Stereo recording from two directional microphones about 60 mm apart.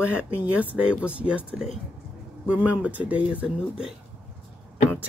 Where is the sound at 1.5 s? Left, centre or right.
Centre.